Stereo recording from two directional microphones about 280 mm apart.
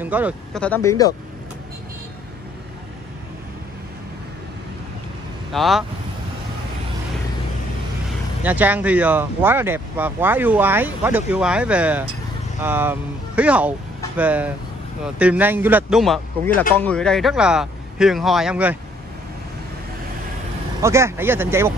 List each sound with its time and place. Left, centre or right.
0.0 s speech: centre
0.7 s speech: centre
5.5 s speech: centre
8.5 s speech: centre
20.8 s speech: centre